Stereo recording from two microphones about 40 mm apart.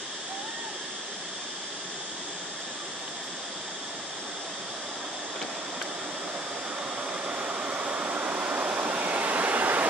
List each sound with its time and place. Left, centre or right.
7.2 s vehicle: right